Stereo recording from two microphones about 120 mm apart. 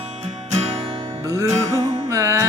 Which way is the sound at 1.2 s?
25° right (ahead or behind).